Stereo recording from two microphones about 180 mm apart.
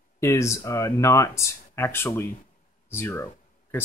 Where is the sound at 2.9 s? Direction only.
15° left (ahead or behind).